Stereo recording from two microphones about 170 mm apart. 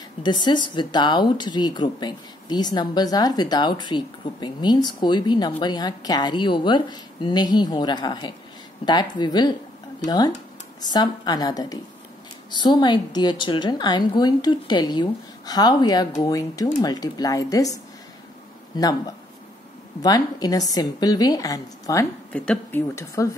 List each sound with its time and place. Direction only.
0.2 s speech: 25° left (ahead or behind)
18.8 s speech: 20° left (ahead or behind)
22.3 s a woman's voice: 5° left (ahead or behind)